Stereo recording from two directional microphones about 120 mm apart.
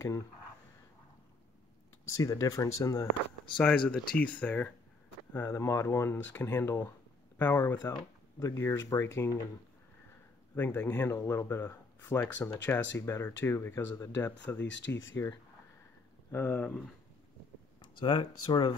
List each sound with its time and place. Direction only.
2.2 s speech: 30° left (ahead or behind)
3.5 s speech: 10° left (ahead or behind)
10.5 s speech: 15° left (ahead or behind)
17.7 s speech: 45° left (ahead or behind)